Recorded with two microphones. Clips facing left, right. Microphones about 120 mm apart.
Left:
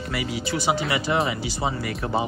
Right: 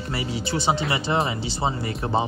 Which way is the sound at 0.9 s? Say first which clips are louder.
Even; 30° right (ahead or behind).